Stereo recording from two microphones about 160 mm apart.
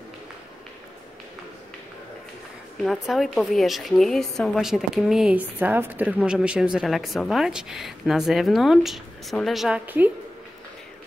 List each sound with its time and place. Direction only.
2.8 s a woman's voice: centre (ahead or behind)